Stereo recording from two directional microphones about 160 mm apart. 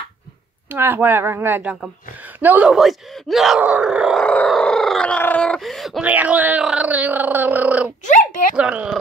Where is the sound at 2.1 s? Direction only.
10° right (ahead or behind).